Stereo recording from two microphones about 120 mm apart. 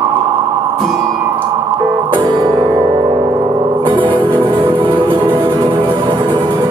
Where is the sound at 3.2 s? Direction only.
40° right (ahead or behind).